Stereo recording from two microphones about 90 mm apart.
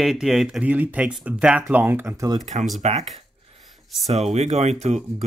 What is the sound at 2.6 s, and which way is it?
Speech, centre (ahead or behind).